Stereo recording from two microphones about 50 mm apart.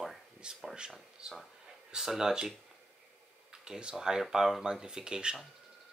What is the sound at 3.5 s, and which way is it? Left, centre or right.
Speech, centre.